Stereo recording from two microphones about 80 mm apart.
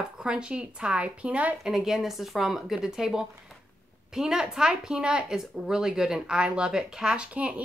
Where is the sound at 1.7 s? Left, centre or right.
Centre.